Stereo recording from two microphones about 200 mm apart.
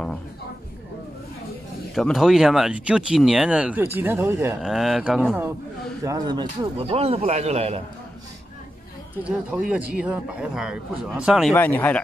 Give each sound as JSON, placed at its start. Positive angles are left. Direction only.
{"t": 2.0, "sound": "speech", "side_deg": 0}
{"t": 4.6, "sound": "speech", "side_deg": 0}
{"t": 6.0, "sound": "speech", "side_deg": -20}
{"t": 9.1, "sound": "speech", "side_deg": -5}
{"t": 11.5, "sound": "speech", "side_deg": 10}